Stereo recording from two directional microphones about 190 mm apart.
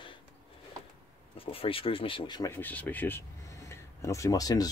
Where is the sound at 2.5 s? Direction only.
10° left (ahead or behind).